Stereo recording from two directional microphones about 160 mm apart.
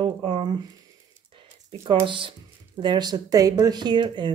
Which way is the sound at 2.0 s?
30° right (ahead or behind).